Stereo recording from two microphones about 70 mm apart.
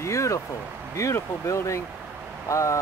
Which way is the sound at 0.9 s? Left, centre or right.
Left.